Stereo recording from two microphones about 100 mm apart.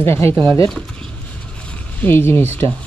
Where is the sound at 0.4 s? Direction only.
55° right (ahead or behind).